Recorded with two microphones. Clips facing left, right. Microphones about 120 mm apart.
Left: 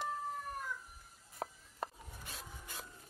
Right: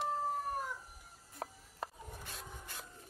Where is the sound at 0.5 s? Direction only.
35° right (ahead or behind).